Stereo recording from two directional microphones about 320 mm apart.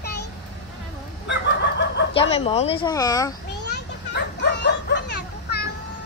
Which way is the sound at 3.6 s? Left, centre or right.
Left.